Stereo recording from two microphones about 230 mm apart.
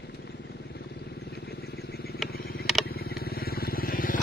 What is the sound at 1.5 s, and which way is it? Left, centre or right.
Vehicle, left.